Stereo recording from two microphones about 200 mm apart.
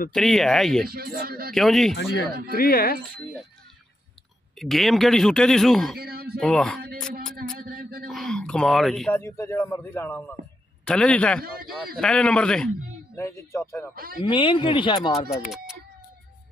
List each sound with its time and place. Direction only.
0.1 s a man's voice: centre (ahead or behind)
0.8 s speech: 50° right (ahead or behind)
1.5 s a man's voice: centre (ahead or behind)
2.5 s speech: 50° left (ahead or behind)
4.6 s a man's voice: centre (ahead or behind)
5.9 s speech: 50° right (ahead or behind)
6.4 s a man's voice: 5° left (ahead or behind)
7.5 s a sound: 45° right (ahead or behind)
8.1 s a sound: 5° left (ahead or behind)
9.1 s a man's voice: 15° left (ahead or behind)
13.9 s speech: 50° right (ahead or behind)
14.3 s speech: 25° left (ahead or behind)
15.5 s speech: centre (ahead or behind)